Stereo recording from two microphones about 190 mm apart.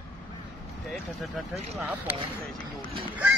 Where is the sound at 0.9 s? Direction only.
5° right (ahead or behind).